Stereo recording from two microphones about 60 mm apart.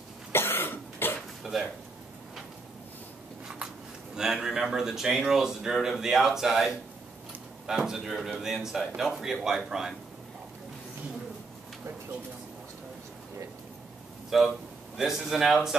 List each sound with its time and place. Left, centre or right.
0.3 s cough: left
1.4 s dishes: centre
4.1 s speech: centre
14.3 s speech: centre